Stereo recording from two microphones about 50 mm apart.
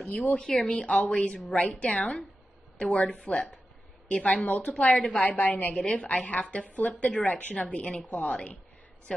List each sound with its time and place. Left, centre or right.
0.0 s a woman's voice: left
0.4 s a woman's voice: centre